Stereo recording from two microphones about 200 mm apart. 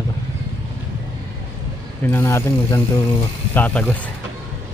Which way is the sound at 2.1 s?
15° left (ahead or behind).